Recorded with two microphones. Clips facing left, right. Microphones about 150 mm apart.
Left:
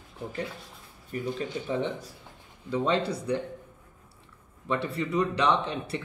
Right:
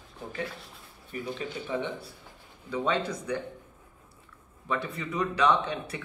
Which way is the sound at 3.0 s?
30° left (ahead or behind).